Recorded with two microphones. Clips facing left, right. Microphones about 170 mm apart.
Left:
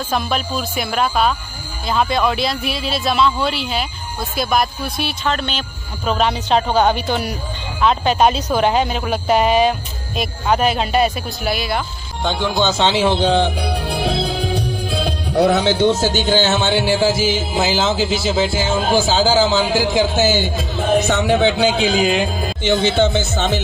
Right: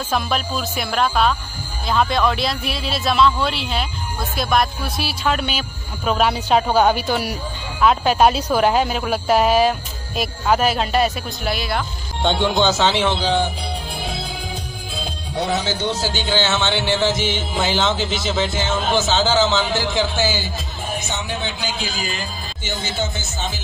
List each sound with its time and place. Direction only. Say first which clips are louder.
0.1 s speech: left 1 dB; centre (ahead or behind)
12.5 s speech: even; 10° right (ahead or behind)
12.8 s speech: left 2 dB; centre (ahead or behind)
13.1 s music: left 4 dB; 60° left (ahead or behind)
16.7 s speech: left 4 dB; 10° left (ahead or behind)
20.2 s music: left 5 dB; 50° left (ahead or behind)
20.5 s music: left 11 dB; 65° left (ahead or behind)